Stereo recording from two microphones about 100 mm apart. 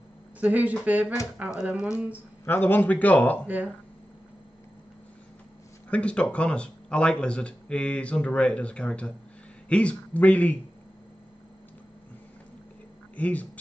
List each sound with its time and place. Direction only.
0.4 s speech: 15° right (ahead or behind)
2.4 s speech: 20° left (ahead or behind)
5.9 s speech: 10° left (ahead or behind)
13.1 s speech: 15° left (ahead or behind)